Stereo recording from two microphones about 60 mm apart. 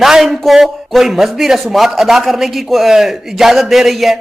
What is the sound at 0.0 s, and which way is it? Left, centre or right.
A man's voice, centre.